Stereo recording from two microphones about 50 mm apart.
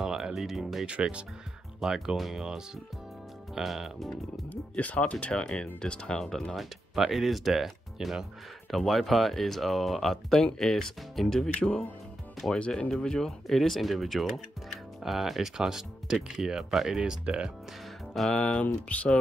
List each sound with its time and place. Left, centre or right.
0.0 s speech: centre
0.8 s speech: right
1.8 s speech: centre
4.5 s speech: left; by 6.4 s centre
6.5 s speech: centre
11.4 s speech: centre
18.3 s speech: centre